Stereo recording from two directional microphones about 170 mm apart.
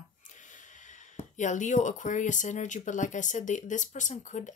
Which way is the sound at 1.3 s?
45° left (ahead or behind).